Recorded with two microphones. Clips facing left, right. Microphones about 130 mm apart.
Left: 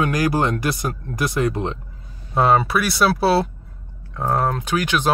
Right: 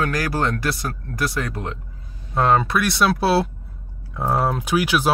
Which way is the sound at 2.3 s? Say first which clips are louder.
Left 1 dB; 5° left (ahead or behind).